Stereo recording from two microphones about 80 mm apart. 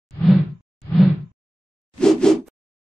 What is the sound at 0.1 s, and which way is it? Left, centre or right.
Whoosh, centre.